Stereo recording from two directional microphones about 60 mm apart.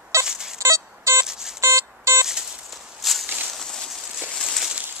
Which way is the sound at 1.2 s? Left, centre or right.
Centre.